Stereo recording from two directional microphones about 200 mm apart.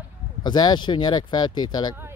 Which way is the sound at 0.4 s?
20° left (ahead or behind).